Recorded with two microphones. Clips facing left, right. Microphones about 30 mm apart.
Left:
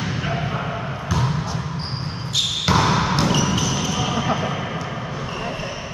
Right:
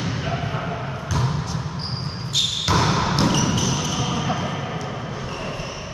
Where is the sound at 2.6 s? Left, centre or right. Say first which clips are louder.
Left 3 dB; centre.